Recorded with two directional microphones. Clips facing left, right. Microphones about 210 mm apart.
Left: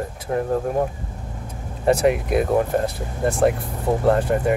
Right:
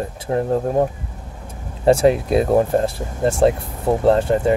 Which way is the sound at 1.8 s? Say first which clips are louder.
Right 4 dB; 30° right (ahead or behind).